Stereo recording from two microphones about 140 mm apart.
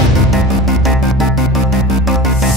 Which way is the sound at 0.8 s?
Centre (ahead or behind).